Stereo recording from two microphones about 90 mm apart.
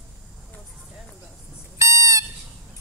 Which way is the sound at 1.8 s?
35° right (ahead or behind).